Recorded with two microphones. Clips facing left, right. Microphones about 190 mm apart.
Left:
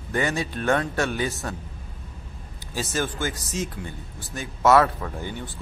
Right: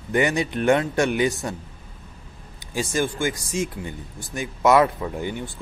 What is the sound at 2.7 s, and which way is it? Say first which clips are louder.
Speech: right 3 dB; 15° right (ahead or behind).